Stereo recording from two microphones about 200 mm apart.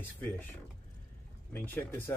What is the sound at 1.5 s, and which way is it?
Speech, 10° left (ahead or behind).